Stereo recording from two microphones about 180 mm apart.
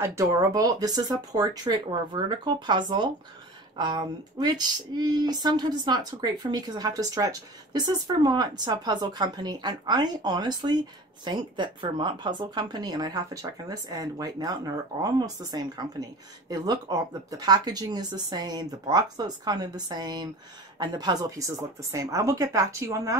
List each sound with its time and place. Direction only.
0.0 s speech: 15° right (ahead or behind)